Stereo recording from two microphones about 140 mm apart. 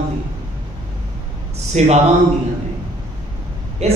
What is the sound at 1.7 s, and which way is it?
Speech, 55° right (ahead or behind).